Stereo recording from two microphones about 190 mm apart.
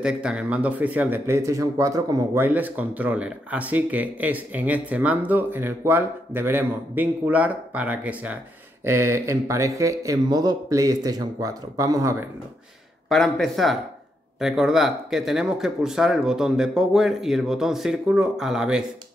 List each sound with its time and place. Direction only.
0.0 s speech: 5° right (ahead or behind)
13.1 s speech: centre (ahead or behind)